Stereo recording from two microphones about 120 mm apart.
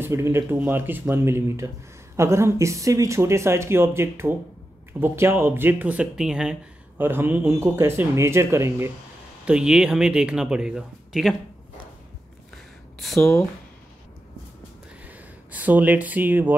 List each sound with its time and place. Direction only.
0.0 s speech: 20° right (ahead or behind)
7.0 s speech: 15° right (ahead or behind)
9.5 s speech: 5° right (ahead or behind)
13.0 s speech: centre (ahead or behind)
15.0 s a sound: 15° right (ahead or behind)